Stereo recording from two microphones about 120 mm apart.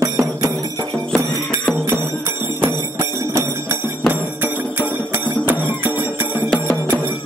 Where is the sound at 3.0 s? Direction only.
25° right (ahead or behind).